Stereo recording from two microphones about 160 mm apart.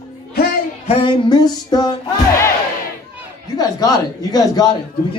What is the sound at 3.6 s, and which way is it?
A man's voice, 25° left (ahead or behind).